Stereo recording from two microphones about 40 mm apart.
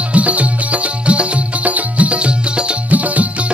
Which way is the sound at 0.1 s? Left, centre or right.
Right.